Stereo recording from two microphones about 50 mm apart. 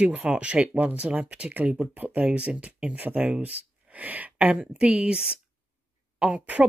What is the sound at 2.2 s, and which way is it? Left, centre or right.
Speech, right.